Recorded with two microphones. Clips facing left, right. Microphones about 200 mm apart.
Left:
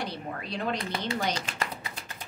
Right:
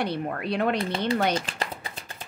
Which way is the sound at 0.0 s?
60° right (ahead or behind).